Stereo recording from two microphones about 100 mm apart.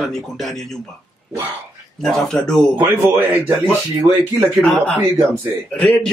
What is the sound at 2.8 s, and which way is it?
Speech, 25° right (ahead or behind).